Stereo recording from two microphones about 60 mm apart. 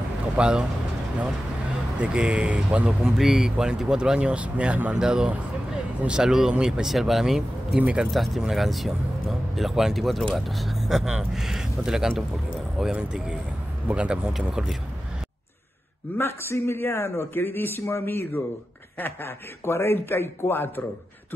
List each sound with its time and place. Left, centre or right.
0.4 s speech: centre
2.0 s speech: centre
3.0 s speech: centre
8.1 s speech: centre
16.2 s a man's voice: left